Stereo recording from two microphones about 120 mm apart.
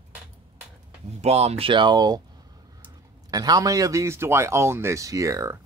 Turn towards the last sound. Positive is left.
turn(degrees=-25)  # may be behind; listen again after turning